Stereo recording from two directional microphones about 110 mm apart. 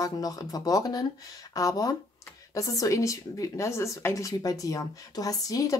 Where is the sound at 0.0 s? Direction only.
35° left (ahead or behind).